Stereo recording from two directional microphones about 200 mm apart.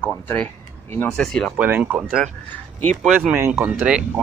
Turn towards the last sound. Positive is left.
turn(degrees=-5)  # may be behind; listen again after turning